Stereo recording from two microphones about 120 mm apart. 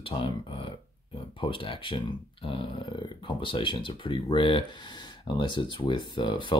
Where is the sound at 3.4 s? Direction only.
45° left (ahead or behind).